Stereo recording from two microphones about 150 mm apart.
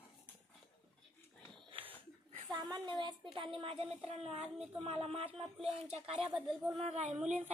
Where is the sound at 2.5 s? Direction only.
30° right (ahead or behind).